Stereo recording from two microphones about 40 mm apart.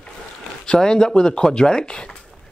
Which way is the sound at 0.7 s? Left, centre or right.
Centre.